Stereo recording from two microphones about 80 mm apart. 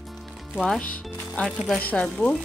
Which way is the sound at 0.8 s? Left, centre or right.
Centre.